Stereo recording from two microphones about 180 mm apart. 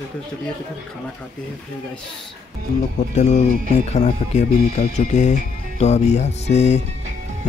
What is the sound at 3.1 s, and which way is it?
Speech, 40° left (ahead or behind).